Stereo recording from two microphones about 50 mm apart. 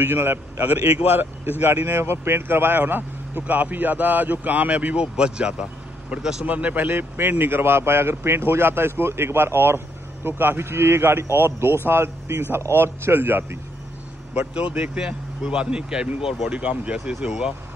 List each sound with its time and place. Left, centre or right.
0.0 s a man's voice: right
14.5 s speech: right
16.4 s speech: right